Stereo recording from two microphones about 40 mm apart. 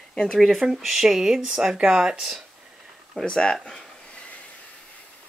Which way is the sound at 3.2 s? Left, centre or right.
Left.